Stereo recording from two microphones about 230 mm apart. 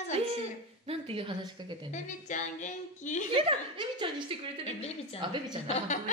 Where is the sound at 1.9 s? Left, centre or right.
Left.